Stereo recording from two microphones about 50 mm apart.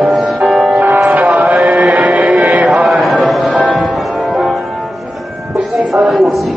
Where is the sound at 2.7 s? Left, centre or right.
Centre.